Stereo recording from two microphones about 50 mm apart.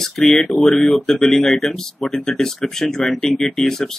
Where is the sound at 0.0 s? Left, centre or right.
Centre.